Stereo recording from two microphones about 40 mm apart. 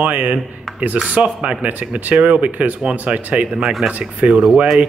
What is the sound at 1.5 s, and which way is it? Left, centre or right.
Speech, right.